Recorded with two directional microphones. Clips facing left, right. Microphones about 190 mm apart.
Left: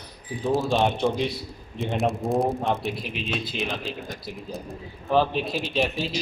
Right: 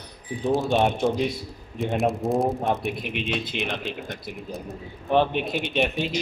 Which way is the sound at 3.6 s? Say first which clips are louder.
Even; centre (ahead or behind).